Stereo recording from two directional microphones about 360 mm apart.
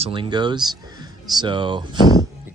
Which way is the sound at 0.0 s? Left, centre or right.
Centre.